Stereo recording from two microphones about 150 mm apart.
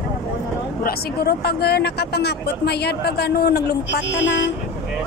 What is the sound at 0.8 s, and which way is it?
Speech, 90° left.